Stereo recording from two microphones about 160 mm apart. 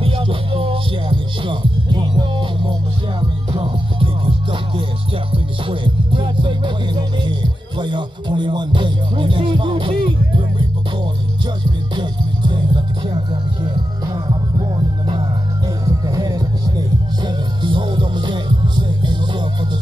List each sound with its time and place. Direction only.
0.0 s music: 35° right (ahead or behind)
11.9 s music: 30° right (ahead or behind)